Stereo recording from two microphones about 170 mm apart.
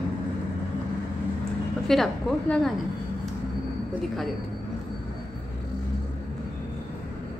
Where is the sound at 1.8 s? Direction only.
Centre (ahead or behind).